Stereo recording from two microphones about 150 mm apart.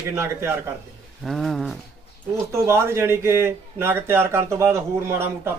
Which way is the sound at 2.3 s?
15° right (ahead or behind).